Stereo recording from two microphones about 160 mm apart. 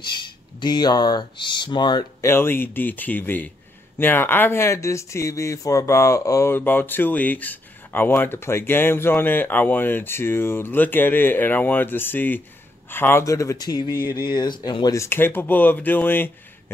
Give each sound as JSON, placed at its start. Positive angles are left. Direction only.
{"t": 0.1, "sound": "speech", "side_deg": 30}
{"t": 2.3, "sound": "speech", "side_deg": 15}